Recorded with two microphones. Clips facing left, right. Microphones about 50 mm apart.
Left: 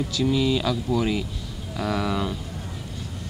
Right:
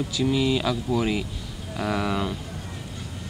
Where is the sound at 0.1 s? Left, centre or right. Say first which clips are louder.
Left 1 dB; centre.